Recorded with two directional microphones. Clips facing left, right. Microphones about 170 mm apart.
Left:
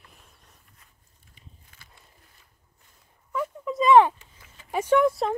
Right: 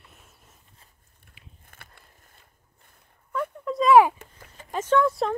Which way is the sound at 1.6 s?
55° right (ahead or behind).